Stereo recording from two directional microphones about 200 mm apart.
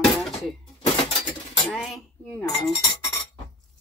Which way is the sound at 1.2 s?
5° left (ahead or behind).